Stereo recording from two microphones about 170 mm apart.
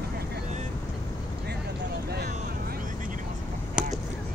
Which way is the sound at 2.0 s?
70° right (ahead or behind).